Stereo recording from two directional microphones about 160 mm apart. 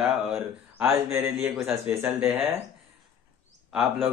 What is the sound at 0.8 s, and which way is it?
Speech, 15° right (ahead or behind).